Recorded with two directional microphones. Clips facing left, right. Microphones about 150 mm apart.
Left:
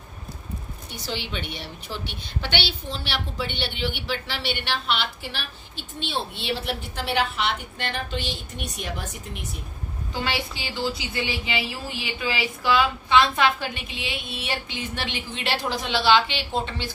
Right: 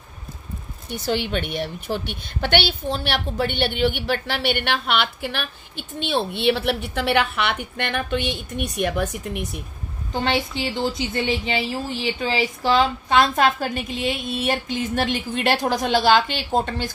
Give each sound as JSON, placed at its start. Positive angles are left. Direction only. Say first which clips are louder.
{"t": 1.0, "sound": "a woman's voice", "louder": "right 8 dB", "side_deg": -55}
{"t": 10.1, "sound": "a woman's voice", "louder": "right 6 dB", "side_deg": -45}